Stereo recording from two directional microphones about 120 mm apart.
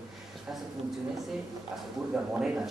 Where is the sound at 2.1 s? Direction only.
10° right (ahead or behind).